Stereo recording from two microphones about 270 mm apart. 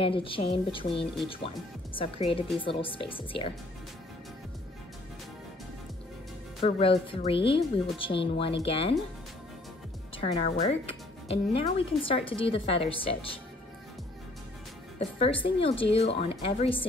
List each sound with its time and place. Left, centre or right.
0.0 s speech: centre
6.6 s speech: left
10.1 s speech: left
15.0 s speech: left